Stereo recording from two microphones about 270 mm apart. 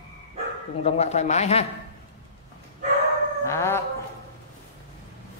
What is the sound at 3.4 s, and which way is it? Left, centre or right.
Speech, centre.